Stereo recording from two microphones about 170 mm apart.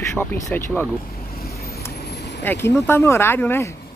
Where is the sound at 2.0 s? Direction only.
75° left (ahead or behind).